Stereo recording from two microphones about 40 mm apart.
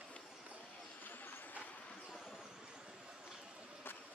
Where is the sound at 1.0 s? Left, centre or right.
Left.